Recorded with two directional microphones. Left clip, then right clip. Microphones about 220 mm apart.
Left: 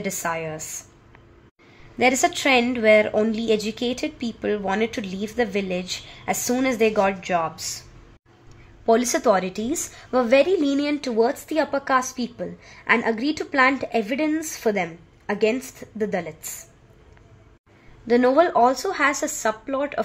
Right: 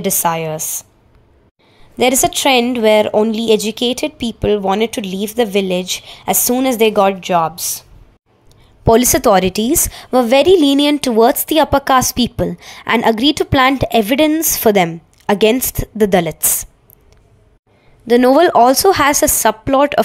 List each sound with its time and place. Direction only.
0.0 s a woman's voice: 30° right (ahead or behind)
2.0 s a woman's voice: 30° right (ahead or behind)
8.8 s a woman's voice: 35° right (ahead or behind)
18.0 s a woman's voice: 40° right (ahead or behind)